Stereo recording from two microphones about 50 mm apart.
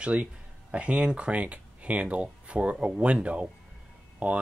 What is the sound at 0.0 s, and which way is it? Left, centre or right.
Speech, right.